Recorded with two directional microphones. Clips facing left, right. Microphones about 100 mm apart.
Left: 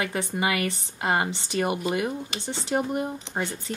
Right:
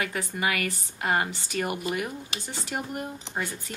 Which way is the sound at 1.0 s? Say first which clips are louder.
Left 1 dB; 25° left (ahead or behind).